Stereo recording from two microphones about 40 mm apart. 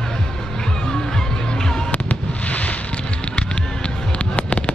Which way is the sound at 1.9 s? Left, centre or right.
Left.